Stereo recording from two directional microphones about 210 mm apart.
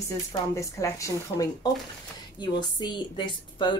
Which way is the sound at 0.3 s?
15° left (ahead or behind).